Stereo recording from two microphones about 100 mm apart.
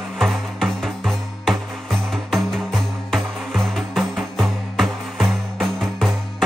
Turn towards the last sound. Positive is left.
turn(degrees=0)  # may be behind; listen again after turning